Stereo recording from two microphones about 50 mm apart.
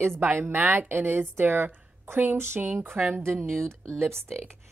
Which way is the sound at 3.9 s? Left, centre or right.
Right.